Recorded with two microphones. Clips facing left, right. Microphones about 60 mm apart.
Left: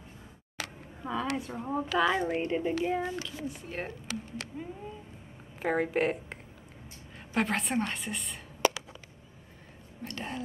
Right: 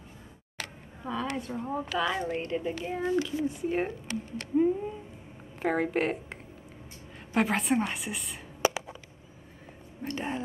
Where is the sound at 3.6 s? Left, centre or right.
Centre.